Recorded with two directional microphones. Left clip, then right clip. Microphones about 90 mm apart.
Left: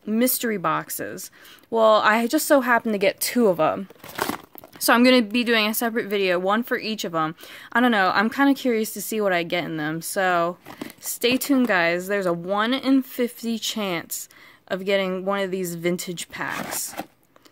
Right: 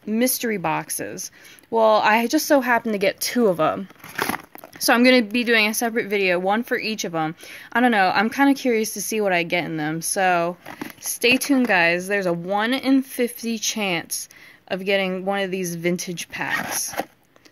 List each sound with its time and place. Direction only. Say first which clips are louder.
0.1 s speech: right 1 dB; 35° left (ahead or behind)
4.8 s speech: right 1 dB; 35° left (ahead or behind)